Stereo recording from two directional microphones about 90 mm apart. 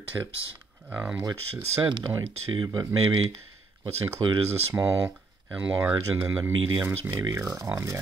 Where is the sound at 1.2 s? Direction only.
45° right (ahead or behind).